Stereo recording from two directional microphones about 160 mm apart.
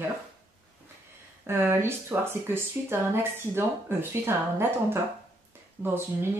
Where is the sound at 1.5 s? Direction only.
15° right (ahead or behind).